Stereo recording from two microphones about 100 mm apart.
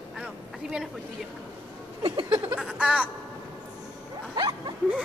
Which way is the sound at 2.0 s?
50° right (ahead or behind).